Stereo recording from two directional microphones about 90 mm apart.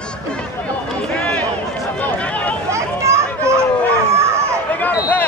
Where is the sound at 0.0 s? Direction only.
10° left (ahead or behind).